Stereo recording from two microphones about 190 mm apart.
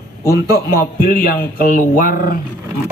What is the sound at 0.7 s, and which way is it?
Speech, 50° left (ahead or behind).